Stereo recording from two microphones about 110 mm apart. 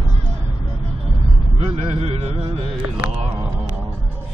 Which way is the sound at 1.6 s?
65° right (ahead or behind).